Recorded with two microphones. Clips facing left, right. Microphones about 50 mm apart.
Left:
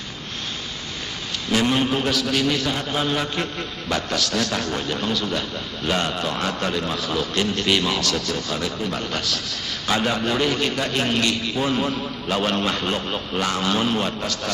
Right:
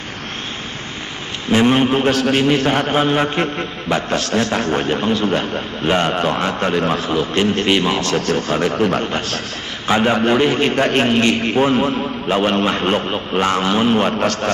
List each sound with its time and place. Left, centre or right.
1.5 s a man's voice: right
2.1 s a man's voice: right
2.7 s a man's voice: right
3.0 s a man's voice: right
9.0 s a man's voice: right
11.7 s a man's voice: right